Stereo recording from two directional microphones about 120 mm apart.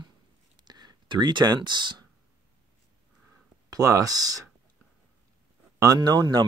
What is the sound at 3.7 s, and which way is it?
Speech, 30° right (ahead or behind).